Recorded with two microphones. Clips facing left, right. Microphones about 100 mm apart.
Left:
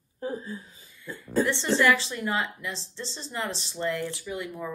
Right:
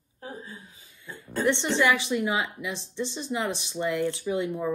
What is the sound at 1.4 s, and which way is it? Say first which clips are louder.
A woman's voice: right 2 dB; 20° right (ahead or behind).